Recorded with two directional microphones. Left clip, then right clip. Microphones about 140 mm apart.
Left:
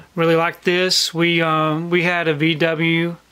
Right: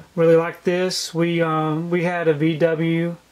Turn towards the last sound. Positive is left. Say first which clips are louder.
# left 2 dB
turn(degrees=30)  # may be behind; listen again after turning